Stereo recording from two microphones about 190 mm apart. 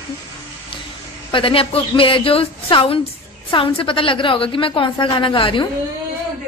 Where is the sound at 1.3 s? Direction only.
30° left (ahead or behind).